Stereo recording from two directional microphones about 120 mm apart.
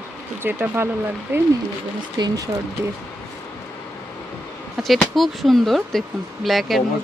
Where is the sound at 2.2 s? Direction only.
35° right (ahead or behind).